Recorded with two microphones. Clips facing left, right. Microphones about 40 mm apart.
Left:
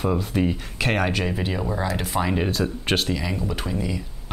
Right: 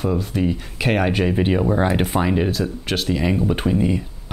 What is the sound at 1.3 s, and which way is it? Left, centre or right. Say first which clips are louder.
Speech: right 8 dB; right.